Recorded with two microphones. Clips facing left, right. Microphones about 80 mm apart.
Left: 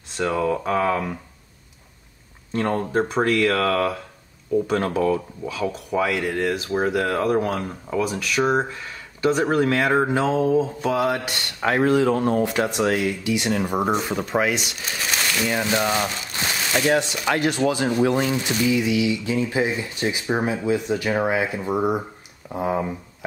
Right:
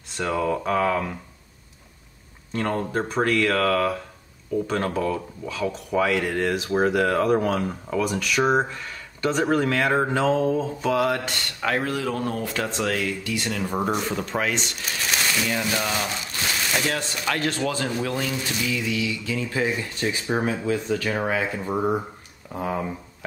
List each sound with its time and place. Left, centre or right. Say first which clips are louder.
0.2 s speech: left 2 dB; centre
2.5 s speech: left 3 dB; centre
5.0 s speech: left 5 dB; centre
5.5 s speech: left 1 dB; centre
11.6 s speech: left 7 dB; left
15.4 s speech: left 4 dB; left